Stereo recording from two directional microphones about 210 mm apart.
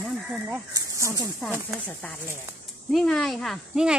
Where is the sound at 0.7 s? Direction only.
15° right (ahead or behind).